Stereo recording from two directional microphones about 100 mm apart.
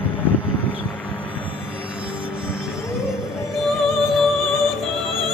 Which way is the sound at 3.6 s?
Centre (ahead or behind).